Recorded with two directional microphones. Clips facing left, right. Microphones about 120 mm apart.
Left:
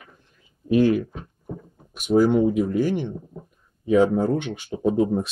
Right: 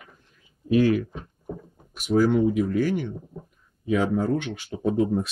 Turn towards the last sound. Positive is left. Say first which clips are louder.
# left 2 dB
turn(degrees=20)  # may be behind; listen again after turning